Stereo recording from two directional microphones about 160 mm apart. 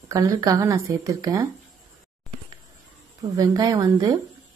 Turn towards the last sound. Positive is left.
turn(degrees=-20)  # may be behind; listen again after turning